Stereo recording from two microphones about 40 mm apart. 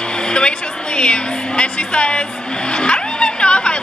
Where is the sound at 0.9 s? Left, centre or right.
Left.